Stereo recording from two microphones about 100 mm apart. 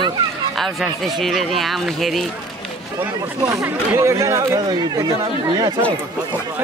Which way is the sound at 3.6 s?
25° right (ahead or behind).